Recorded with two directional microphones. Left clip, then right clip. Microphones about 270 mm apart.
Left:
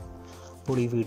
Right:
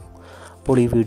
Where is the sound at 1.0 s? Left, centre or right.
Right.